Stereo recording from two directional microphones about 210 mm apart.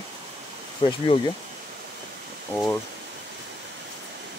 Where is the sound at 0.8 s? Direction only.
25° left (ahead or behind).